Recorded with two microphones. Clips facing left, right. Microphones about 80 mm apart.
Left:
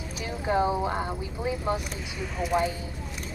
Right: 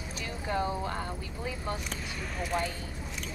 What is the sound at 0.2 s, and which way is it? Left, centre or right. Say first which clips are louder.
Speech: left 7 dB; centre.